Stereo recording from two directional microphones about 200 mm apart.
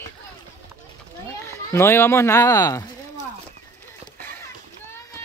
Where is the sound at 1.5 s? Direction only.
15° left (ahead or behind).